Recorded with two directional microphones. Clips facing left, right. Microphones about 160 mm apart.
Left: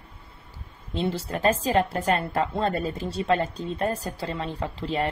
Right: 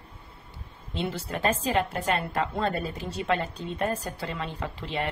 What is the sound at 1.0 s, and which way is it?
A woman's voice, 35° left (ahead or behind).